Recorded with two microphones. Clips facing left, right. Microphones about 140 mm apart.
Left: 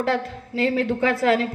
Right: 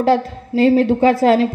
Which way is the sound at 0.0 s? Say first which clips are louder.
Right 8 dB; 35° right (ahead or behind).